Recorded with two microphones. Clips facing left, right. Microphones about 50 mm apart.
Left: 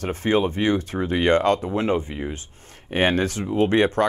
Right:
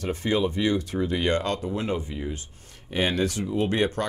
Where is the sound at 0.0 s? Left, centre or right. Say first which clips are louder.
Left 4 dB; left.